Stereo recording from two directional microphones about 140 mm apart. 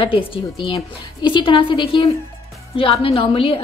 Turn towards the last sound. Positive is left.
turn(degrees=40)  # may be behind; listen again after turning